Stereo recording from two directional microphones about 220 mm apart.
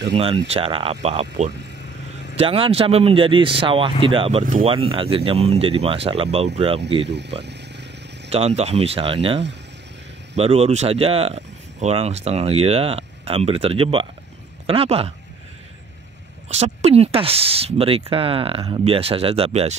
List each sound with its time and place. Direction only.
0.5 s speech: 25° right (ahead or behind)
2.3 s speech: 25° right (ahead or behind)
7.1 s speech: 50° right (ahead or behind)
8.3 s speech: 30° right (ahead or behind)
16.5 s speech: 30° right (ahead or behind)